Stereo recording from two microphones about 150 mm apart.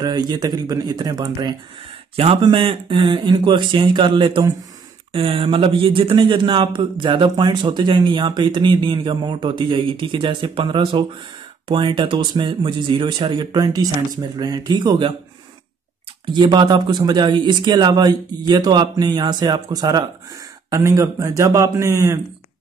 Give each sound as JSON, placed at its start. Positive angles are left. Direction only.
{"t": 0.0, "sound": "a man's voice", "side_deg": -25}
{"t": 16.3, "sound": "speech", "side_deg": -30}